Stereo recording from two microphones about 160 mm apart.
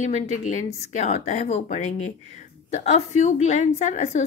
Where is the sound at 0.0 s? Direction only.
45° left (ahead or behind).